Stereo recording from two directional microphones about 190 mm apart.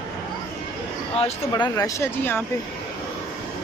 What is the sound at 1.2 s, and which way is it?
Speech, 25° left (ahead or behind).